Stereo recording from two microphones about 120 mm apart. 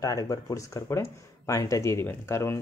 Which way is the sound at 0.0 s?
30° left (ahead or behind).